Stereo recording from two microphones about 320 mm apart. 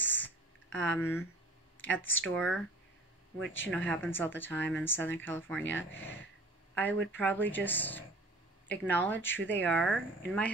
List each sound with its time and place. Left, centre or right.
0.0 s a sound: centre
2.0 s speech: left
2.3 s speech: centre
3.6 s speech: centre
6.7 s a sound: centre
7.1 s speech: centre